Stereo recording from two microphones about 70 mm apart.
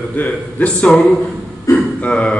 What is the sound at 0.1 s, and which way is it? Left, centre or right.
A man's voice, left.